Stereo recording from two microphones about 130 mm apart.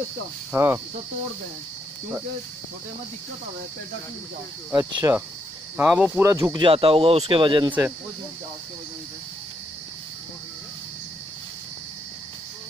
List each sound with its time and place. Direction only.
0.5 s speech: 25° right (ahead or behind)
4.7 s speech: 25° right (ahead or behind)
5.8 s speech: 10° right (ahead or behind)
6.2 s speech: 25° right (ahead or behind)
6.6 s speech: 45° right (ahead or behind)